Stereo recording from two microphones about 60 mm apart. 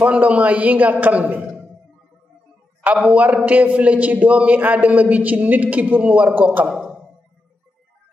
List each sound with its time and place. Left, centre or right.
0.0 s a man's voice: right
2.8 s a man's voice: right
6.7 s a sound: centre